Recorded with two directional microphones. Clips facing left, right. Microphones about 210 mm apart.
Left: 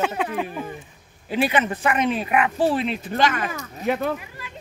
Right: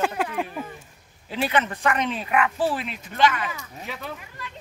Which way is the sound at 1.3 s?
15° left (ahead or behind).